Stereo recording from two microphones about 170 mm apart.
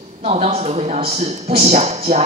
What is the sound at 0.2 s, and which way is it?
Speech, 40° right (ahead or behind).